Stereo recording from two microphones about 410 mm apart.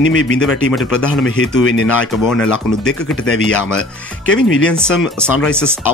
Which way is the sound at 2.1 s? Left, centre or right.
Centre.